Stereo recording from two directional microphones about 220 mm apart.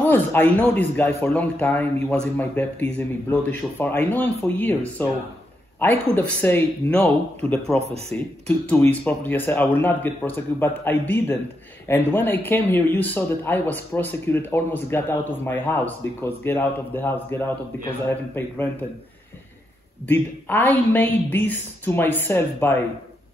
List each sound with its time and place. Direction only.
0.0 s speech: 10° left (ahead or behind)
7.7 s speech: 30° right (ahead or behind)
8.6 s speech: 10° left (ahead or behind)
20.1 s speech: 10° left (ahead or behind)